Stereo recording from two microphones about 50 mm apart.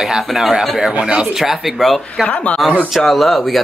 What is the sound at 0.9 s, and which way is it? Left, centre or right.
Speech, centre.